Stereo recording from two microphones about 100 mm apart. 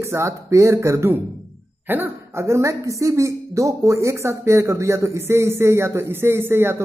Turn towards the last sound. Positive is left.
turn(degrees=-25)  # may be behind; listen again after turning